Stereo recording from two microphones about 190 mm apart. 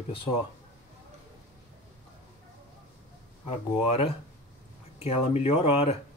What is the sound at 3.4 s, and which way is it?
Speech, 30° left (ahead or behind).